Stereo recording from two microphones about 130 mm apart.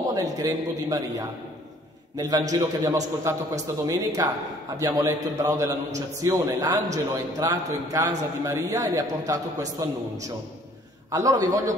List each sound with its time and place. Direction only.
0.1 s a man's voice: 25° right (ahead or behind)
11.1 s a man's voice: 25° right (ahead or behind)